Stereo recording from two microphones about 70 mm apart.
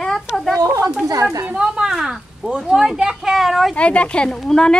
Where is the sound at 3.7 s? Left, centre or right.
Centre.